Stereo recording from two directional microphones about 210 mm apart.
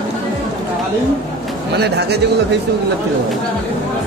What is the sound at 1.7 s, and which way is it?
Speech, 50° right (ahead or behind).